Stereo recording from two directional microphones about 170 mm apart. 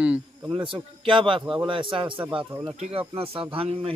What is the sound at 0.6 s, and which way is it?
A man's voice, 30° right (ahead or behind).